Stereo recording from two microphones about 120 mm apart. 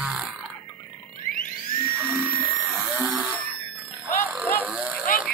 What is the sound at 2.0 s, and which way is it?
Dental drill, 20° right (ahead or behind).